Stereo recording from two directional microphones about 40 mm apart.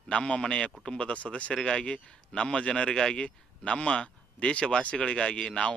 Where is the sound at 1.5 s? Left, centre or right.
Centre.